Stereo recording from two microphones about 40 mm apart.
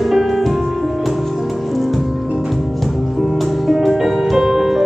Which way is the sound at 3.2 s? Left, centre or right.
Centre.